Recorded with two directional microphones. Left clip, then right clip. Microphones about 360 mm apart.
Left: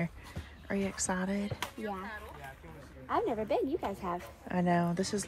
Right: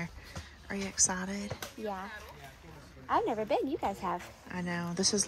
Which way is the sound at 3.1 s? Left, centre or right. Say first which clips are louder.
Right 2 dB; right.